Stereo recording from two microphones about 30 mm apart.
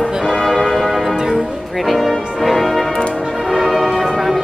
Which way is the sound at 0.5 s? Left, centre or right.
Centre.